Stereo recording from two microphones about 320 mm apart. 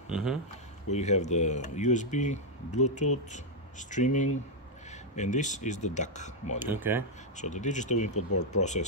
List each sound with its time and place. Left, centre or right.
0.1 s speech: centre
0.8 s speech: left
6.6 s speech: centre
7.3 s speech: left
8.1 s speech: left
8.4 s speech: left